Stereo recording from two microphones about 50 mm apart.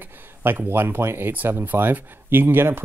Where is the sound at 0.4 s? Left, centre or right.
Right.